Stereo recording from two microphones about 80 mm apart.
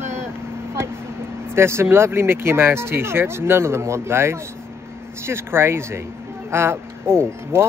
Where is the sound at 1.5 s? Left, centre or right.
Right.